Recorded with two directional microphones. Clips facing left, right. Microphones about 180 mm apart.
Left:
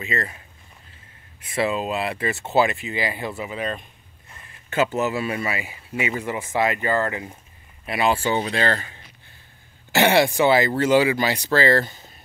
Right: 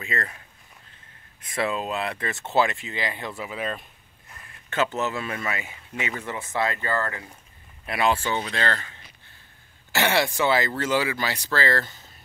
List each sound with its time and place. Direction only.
0.0 s speech: 5° left (ahead or behind)
1.4 s speech: 5° left (ahead or behind)
7.8 s speech: 5° left (ahead or behind)
8.5 s speech: 20° left (ahead or behind)
9.9 s speech: 15° left (ahead or behind)